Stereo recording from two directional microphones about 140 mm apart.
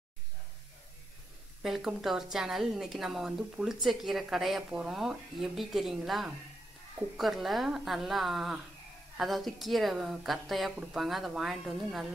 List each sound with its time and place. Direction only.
1.6 s a woman's voice: centre (ahead or behind)